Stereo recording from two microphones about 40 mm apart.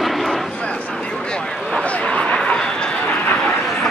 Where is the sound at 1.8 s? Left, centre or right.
Left.